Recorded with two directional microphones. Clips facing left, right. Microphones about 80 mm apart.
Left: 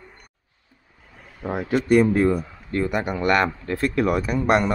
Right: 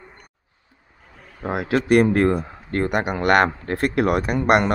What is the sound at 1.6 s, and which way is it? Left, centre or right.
A man's voice, right.